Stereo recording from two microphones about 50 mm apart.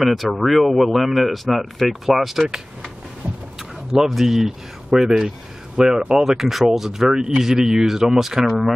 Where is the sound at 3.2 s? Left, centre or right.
Right.